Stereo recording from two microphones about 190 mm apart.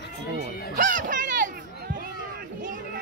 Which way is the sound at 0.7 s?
45° right (ahead or behind).